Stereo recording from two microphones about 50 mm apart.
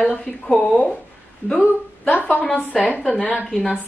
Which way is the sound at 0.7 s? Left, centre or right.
Centre.